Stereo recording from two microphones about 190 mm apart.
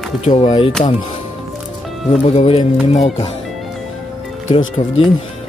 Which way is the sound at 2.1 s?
30° left (ahead or behind).